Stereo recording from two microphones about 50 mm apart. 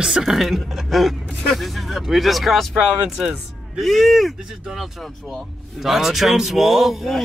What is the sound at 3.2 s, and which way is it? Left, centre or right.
Speech, centre.